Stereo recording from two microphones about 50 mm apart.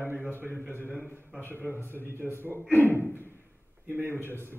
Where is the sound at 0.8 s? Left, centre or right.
Left.